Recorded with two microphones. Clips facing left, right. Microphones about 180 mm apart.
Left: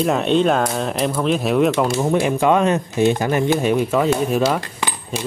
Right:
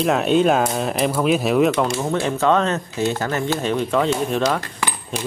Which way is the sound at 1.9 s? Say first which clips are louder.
Left 4 dB; 15° left (ahead or behind).